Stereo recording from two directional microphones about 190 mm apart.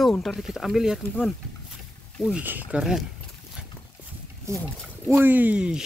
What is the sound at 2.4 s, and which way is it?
Speech, 10° right (ahead or behind).